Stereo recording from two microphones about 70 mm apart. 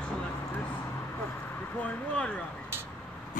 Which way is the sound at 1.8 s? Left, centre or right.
Centre.